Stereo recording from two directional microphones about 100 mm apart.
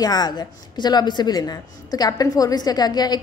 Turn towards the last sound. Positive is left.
turn(degrees=45)  # may be behind; listen again after turning